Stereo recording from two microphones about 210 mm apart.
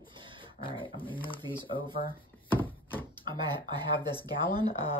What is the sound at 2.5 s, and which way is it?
Chopping, 10° left (ahead or behind).